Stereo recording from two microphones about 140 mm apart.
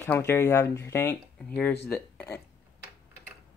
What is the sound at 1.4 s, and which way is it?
Speech, 10° left (ahead or behind).